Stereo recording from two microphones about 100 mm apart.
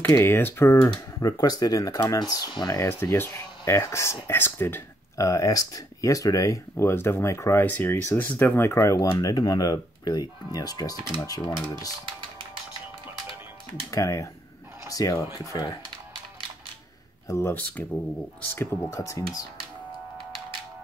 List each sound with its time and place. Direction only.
0.0 s speech: 25° left (ahead or behind)
1.2 s speech: 40° left (ahead or behind)
2.8 s speech: 25° left (ahead or behind)
5.1 s speech: 35° left (ahead or behind)
13.8 s speech: 30° left (ahead or behind)
17.3 s speech: 25° left (ahead or behind)